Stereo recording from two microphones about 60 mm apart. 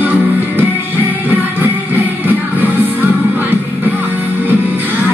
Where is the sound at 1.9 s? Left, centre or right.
Right.